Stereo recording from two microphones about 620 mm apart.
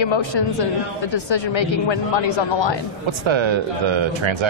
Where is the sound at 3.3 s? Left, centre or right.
Right.